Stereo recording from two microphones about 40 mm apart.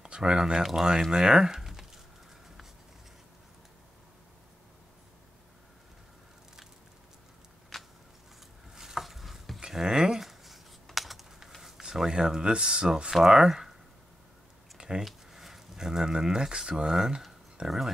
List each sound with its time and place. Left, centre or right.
0.0 s speech: right
7.7 s a sound: centre
8.7 s stir: centre
9.6 s a sound: centre
10.2 s writing: centre
11.0 s computer keyboard: centre
11.6 s speech: centre
13.1 s speech: centre
14.8 s a sound: right
15.0 s speech: centre